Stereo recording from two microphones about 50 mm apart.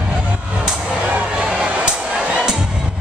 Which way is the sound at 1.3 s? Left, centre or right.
Centre.